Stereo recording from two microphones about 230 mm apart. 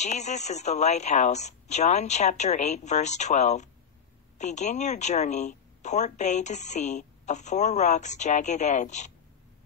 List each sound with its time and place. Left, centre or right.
0.0 s a woman's voice: left